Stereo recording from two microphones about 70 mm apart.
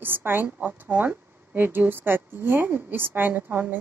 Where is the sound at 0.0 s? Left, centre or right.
Right.